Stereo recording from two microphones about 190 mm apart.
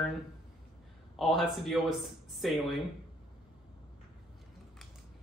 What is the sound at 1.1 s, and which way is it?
Speech, centre (ahead or behind).